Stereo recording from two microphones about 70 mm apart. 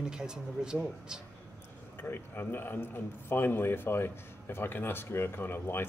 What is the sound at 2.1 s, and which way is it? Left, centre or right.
A man's voice, left.